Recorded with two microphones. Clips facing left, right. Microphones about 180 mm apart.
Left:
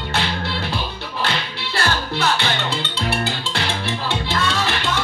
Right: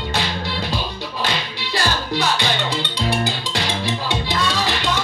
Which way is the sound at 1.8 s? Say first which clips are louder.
Even; 15° right (ahead or behind).